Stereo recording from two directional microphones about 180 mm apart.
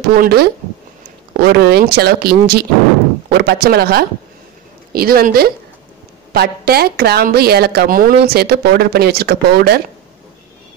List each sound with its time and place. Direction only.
0.0 s a woman's voice: 60° right (ahead or behind)